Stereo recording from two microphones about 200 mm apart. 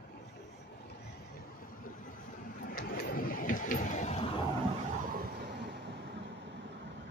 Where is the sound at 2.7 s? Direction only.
45° left (ahead or behind).